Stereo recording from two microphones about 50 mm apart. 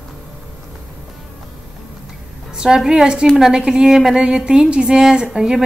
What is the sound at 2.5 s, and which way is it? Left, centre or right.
A woman's voice, centre.